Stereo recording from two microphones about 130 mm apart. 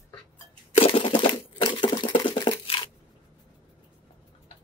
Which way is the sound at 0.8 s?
45° left (ahead or behind).